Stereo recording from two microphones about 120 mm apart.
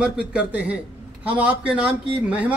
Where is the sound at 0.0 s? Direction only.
10° right (ahead or behind).